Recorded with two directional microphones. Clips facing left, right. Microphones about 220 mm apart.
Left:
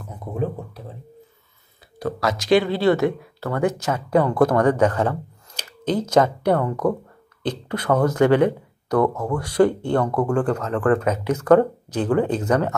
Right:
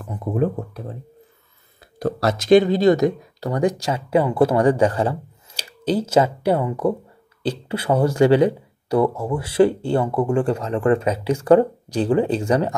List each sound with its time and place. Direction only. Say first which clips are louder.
0.0 s a sound: right 6 dB; 55° right (ahead or behind)
0.3 s speech: right 5 dB; 55° right (ahead or behind)
2.0 s speech: right 2 dB; 30° right (ahead or behind)
2.6 s speech: right 3 dB; 15° right (ahead or behind)